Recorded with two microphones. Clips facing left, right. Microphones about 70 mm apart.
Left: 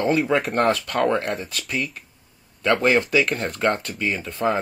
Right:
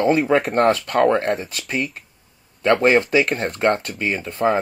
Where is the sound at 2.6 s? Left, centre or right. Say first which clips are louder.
Right 3 dB; right.